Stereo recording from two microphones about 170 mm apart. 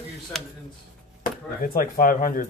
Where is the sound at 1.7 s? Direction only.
55° left (ahead or behind).